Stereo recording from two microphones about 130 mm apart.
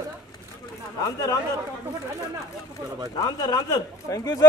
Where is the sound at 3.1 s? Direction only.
30° left (ahead or behind).